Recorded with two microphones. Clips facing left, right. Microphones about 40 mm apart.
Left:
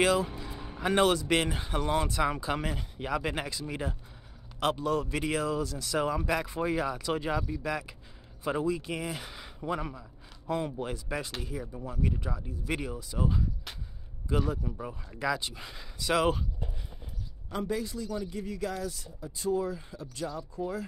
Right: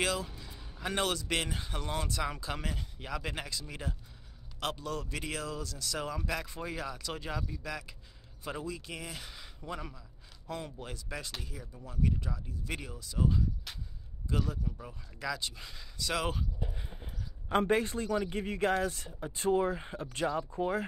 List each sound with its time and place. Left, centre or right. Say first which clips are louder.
0.0 s speech: left 7 dB; left
0.3 s music: left 8 dB; left
0.8 s speech: left 8 dB; left
14.6 s speech: left 5 dB; left
15.1 s speech: left 5 dB; left
17.5 s speech: right 4 dB; right